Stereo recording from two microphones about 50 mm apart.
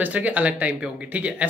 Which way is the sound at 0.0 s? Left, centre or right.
Right.